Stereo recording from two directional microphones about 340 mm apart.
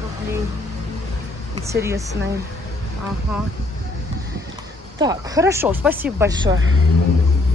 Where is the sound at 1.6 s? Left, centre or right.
Centre.